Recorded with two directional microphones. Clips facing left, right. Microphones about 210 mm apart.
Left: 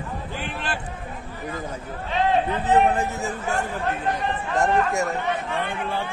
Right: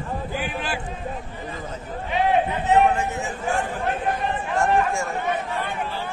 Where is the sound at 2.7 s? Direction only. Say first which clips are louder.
Right 1 dB; 35° left (ahead or behind).